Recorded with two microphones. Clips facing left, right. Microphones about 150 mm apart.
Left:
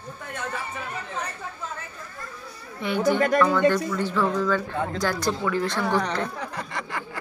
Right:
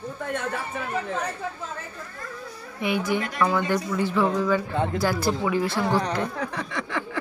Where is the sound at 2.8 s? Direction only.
10° right (ahead or behind).